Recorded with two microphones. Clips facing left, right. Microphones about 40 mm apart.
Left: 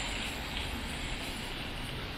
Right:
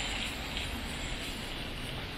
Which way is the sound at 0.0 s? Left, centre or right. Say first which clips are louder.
Right 1 dB; centre.